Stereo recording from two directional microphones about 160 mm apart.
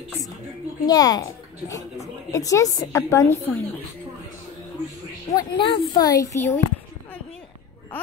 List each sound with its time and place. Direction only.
0.8 s a woman's voice: 25° left (ahead or behind)
5.3 s a woman's voice: 25° left (ahead or behind)